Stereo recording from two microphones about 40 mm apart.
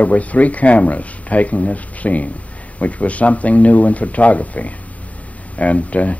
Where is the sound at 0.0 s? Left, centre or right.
Left.